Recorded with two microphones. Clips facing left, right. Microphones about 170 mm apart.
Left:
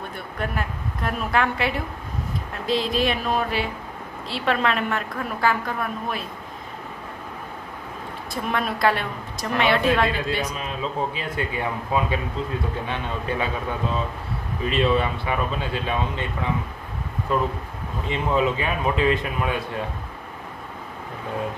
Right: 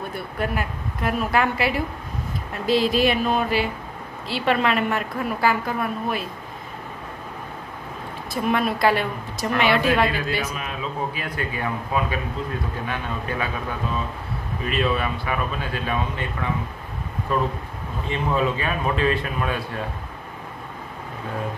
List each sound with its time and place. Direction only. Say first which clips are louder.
0.1 s a woman's voice: right 3 dB; 5° right (ahead or behind)
8.3 s a woman's voice: right 4 dB; 5° right (ahead or behind)
10.0 s a man's voice: even; 25° left (ahead or behind)
14.7 s a man's voice: left 2 dB; 25° left (ahead or behind)
18.0 s a man's voice: left 1 dB; 20° left (ahead or behind)